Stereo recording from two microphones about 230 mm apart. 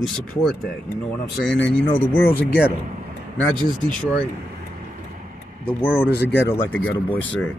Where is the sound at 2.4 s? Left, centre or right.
Left.